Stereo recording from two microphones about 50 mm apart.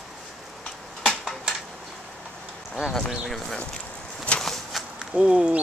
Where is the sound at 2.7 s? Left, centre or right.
Centre.